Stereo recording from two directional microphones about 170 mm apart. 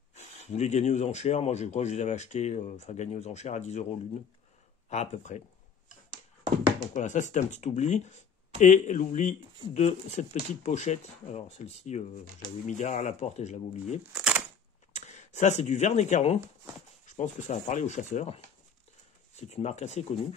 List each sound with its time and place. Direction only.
0.1 s speech: 40° left (ahead or behind)
4.8 s speech: 40° left (ahead or behind)
6.9 s speech: 45° left (ahead or behind)
14.1 s speech: 5° right (ahead or behind)
14.9 s speech: 45° left (ahead or behind)